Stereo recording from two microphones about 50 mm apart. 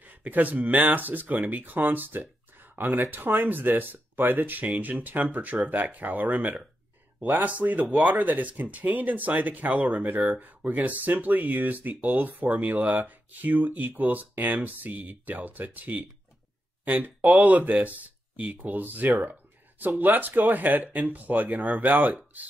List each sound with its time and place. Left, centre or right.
0.0 s speech: right